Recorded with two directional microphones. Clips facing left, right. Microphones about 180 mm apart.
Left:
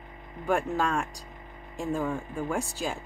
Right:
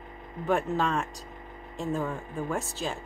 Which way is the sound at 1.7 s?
15° left (ahead or behind).